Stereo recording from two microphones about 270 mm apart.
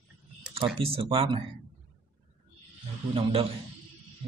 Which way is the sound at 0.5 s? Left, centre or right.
Centre.